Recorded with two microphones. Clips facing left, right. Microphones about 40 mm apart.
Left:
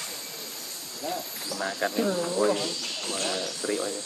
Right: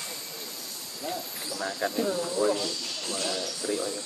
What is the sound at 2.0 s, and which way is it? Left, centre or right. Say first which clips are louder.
Speech: left 2 dB; left.